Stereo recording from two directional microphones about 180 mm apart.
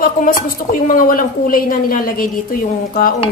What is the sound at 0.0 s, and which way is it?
Speech, 50° left (ahead or behind).